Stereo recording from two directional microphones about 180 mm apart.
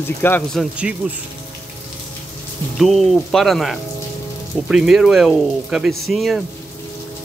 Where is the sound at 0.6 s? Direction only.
5° right (ahead or behind).